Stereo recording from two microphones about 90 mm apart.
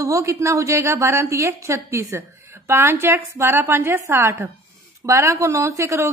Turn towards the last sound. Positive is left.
turn(degrees=-35)  # may be behind; listen again after turning